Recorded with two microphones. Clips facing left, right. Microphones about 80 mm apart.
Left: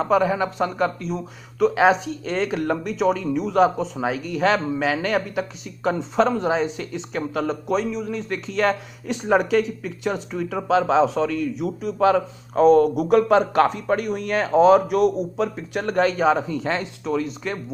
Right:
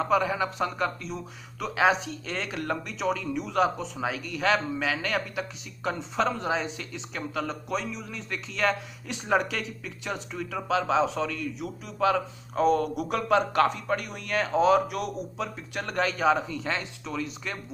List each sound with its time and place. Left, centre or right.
0.0 s speech: left
11.1 s a man's voice: centre
11.8 s speech: left
15.0 s speech: left
15.7 s speech: left